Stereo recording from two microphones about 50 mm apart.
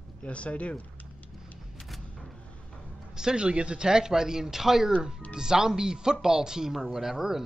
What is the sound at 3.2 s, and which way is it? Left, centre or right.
Speech, centre.